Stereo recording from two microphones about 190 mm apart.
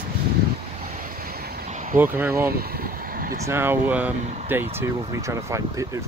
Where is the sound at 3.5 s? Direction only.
10° right (ahead or behind).